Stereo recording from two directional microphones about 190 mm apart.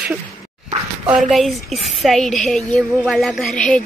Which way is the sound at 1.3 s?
Centre (ahead or behind).